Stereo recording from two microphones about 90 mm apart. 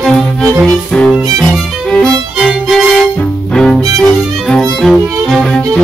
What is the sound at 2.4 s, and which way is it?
Violin, 5° right (ahead or behind).